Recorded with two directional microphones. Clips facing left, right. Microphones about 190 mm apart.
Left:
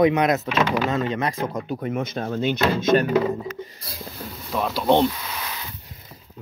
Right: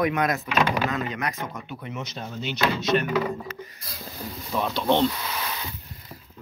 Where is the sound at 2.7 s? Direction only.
40° left (ahead or behind).